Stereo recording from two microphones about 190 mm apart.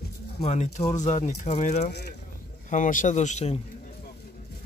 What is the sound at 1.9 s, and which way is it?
Speech, 60° left (ahead or behind).